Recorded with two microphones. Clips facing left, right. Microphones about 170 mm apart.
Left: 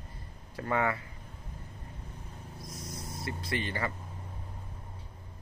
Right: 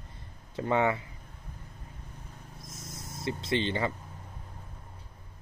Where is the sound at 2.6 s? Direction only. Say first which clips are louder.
Left 4 dB; 25° right (ahead or behind).